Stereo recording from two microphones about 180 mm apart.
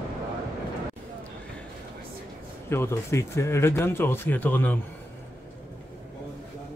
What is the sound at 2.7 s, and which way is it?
Speech, 15° left (ahead or behind).